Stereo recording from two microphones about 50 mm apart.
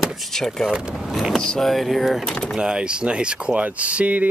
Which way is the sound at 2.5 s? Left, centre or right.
Centre.